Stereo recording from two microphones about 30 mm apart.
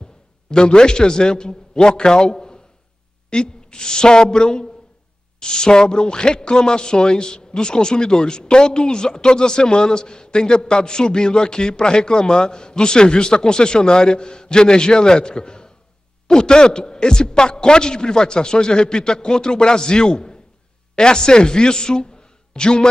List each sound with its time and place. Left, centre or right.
0.5 s a man's voice: left